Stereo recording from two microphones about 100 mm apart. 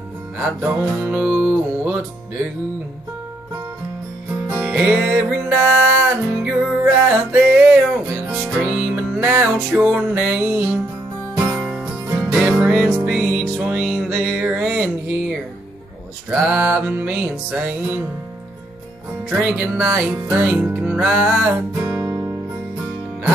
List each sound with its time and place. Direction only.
0.4 s music: 20° right (ahead or behind)
4.5 s music: 15° right (ahead or behind)
11.4 s music: 5° right (ahead or behind)
16.3 s a sound: 20° right (ahead or behind)
17.0 s music: 15° right (ahead or behind)
19.2 s music: 15° right (ahead or behind)